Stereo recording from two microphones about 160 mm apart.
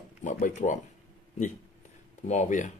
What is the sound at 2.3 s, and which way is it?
Speech, 50° left (ahead or behind).